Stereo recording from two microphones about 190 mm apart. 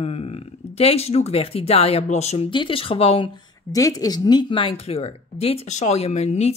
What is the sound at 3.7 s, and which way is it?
Speech, 20° left (ahead or behind).